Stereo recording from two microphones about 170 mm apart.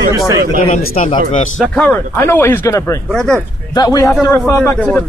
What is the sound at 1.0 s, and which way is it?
Speech, 45° left (ahead or behind).